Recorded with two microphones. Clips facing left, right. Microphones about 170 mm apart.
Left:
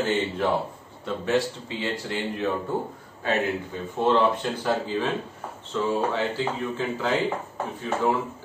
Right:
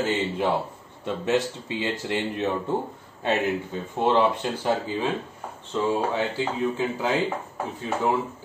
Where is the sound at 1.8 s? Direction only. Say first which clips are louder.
Right 2 dB; 20° right (ahead or behind).